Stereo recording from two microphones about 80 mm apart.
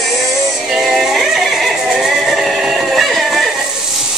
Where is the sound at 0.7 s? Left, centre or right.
Centre.